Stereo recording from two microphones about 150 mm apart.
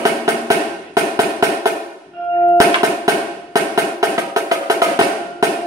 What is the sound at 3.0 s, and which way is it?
Music, 20° right (ahead or behind).